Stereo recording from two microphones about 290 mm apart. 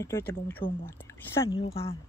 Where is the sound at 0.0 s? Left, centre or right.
Centre.